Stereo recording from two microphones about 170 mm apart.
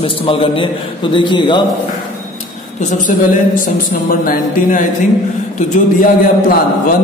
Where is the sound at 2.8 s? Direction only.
50° left (ahead or behind).